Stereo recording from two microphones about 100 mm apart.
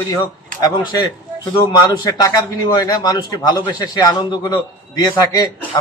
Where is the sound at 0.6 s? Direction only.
40° left (ahead or behind).